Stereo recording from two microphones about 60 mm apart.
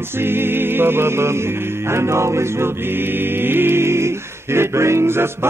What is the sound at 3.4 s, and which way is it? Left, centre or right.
A capella, right.